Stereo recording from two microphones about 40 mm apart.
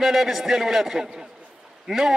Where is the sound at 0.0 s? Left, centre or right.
Centre.